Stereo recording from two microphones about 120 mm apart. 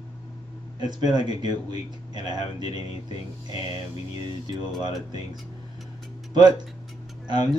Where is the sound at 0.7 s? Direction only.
35° right (ahead or behind).